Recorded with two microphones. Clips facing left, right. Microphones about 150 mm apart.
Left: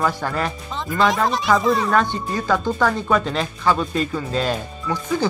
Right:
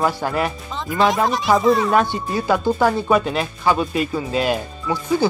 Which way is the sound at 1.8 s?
15° right (ahead or behind).